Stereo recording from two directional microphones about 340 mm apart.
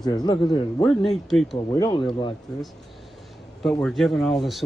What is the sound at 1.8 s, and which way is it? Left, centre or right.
Speech, centre.